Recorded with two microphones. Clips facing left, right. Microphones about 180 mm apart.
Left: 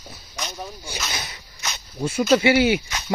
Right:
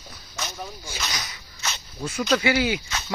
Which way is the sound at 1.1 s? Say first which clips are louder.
Left 2 dB; 25° left (ahead or behind).